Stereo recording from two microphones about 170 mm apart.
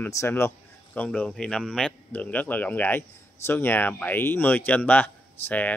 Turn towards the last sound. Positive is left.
turn(degrees=10)  # may be behind; listen again after turning